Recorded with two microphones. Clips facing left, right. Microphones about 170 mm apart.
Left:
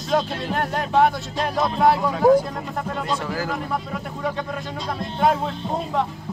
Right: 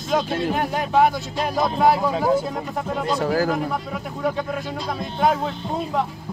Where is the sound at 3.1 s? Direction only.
40° right (ahead or behind).